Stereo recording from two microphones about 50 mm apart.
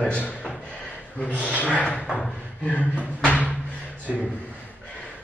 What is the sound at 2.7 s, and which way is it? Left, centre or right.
Speech, left.